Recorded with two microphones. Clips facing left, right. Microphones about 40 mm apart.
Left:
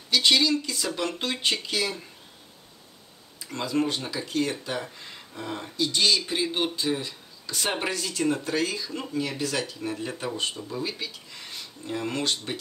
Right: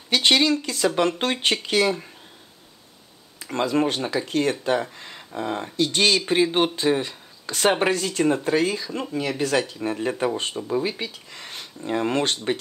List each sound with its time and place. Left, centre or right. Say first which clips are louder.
0.1 s speech: right 3 dB; right
3.3 s speech: right 5 dB; right
4.9 s speech: right 7 dB; right
5.8 s speech: right 3 dB; right